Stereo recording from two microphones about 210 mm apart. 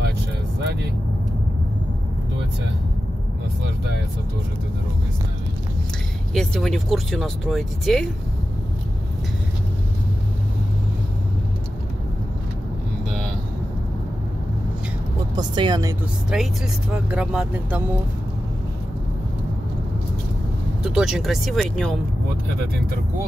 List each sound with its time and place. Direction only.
6.3 s speech: centre (ahead or behind)
15.3 s speech: 20° right (ahead or behind)
16.3 s speech: 5° right (ahead or behind)
20.8 s speech: centre (ahead or behind)